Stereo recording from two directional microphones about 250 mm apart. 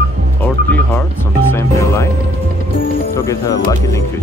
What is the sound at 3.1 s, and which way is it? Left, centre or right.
Speech, centre.